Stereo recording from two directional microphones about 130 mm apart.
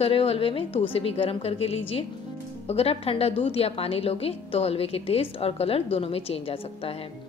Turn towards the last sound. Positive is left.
turn(degrees=50)  # may be behind; listen again after turning